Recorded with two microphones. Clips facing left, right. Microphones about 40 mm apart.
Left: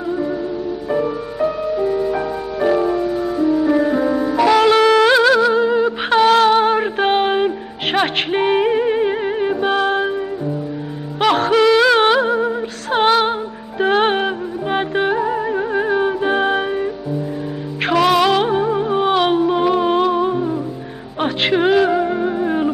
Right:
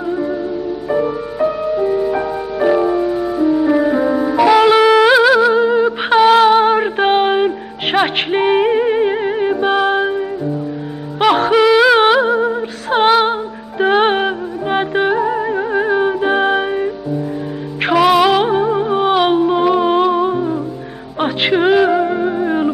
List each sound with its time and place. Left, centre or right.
0.8 s music: centre